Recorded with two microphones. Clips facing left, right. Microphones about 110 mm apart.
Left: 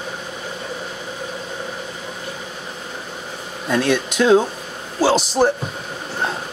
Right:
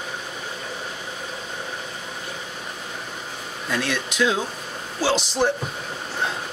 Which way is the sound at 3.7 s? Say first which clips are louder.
Left 7 dB; 45° left (ahead or behind).